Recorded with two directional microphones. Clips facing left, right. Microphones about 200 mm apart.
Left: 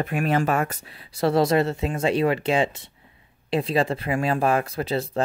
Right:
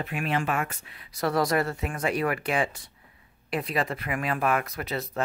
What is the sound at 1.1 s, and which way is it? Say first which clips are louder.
Speech: left 5 dB; 25° left (ahead or behind).